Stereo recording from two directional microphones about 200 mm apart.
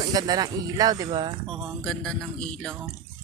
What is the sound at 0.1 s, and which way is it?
Speech, 20° right (ahead or behind).